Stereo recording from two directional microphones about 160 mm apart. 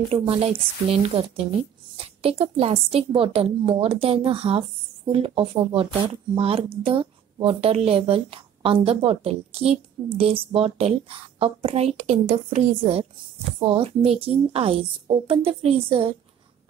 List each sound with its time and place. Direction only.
0.1 s a woman's voice: 35° right (ahead or behind)